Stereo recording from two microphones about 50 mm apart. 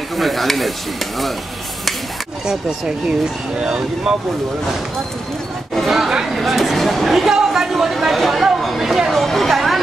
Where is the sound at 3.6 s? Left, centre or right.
Centre.